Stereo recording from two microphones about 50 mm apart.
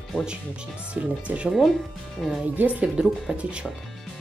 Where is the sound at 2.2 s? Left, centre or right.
Centre.